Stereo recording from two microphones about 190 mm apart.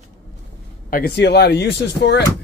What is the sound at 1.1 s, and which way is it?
Speech, 60° left (ahead or behind).